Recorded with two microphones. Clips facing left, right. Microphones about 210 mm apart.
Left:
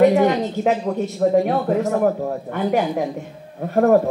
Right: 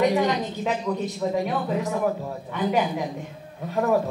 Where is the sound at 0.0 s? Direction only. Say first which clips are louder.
Left 7 dB; 50° left (ahead or behind).